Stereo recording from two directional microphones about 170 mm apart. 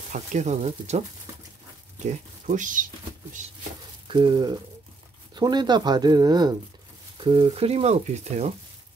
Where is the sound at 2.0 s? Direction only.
45° right (ahead or behind).